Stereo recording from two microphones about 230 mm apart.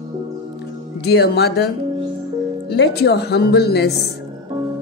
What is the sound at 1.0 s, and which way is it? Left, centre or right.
Speech, left.